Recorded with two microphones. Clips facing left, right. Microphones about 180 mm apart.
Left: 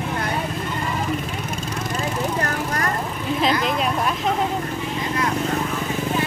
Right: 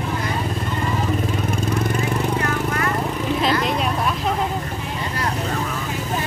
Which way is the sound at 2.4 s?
40° left (ahead or behind).